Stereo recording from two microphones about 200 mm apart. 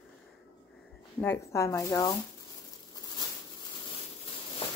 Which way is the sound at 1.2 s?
15° left (ahead or behind).